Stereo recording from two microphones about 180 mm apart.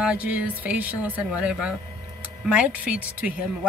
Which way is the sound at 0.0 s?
5° right (ahead or behind).